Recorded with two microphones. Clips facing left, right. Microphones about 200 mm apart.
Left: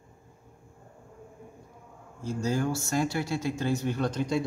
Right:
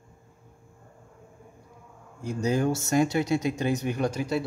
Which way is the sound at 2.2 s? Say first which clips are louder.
Right 3 dB; 20° right (ahead or behind).